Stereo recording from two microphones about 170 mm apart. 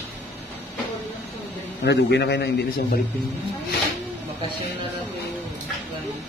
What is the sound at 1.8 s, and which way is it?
Speech, 80° left.